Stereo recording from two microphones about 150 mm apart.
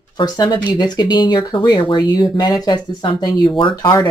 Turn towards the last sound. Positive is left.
turn(degrees=35)  # may be behind; listen again after turning